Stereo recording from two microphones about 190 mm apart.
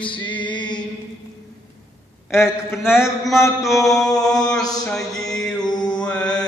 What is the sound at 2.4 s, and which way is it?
Speech, 10° left (ahead or behind).